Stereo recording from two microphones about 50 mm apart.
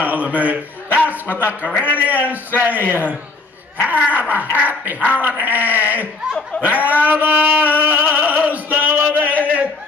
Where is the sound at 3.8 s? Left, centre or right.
Right.